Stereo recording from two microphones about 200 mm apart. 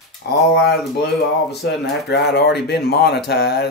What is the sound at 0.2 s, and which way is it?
Speech, 55° left (ahead or behind).